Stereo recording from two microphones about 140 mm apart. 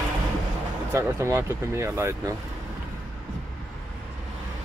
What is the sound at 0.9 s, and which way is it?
Speech, 20° right (ahead or behind).